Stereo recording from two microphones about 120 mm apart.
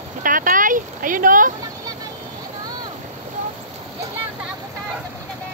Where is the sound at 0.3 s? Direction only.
90° right.